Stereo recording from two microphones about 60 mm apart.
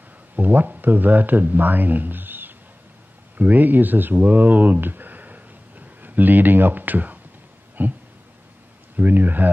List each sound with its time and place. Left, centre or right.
0.4 s speech: right
7.8 s a sound: right
8.9 s speech: right